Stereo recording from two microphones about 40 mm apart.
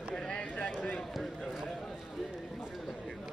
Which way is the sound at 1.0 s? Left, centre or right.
Centre.